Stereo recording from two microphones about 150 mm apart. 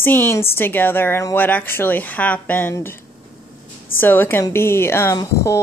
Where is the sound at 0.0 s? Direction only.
15° left (ahead or behind).